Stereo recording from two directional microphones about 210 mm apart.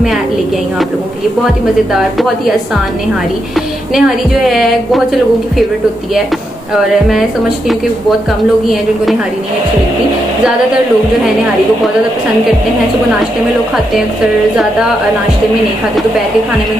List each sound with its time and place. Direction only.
3.9 s a woman's voice: centre (ahead or behind)
6.7 s a woman's voice: centre (ahead or behind)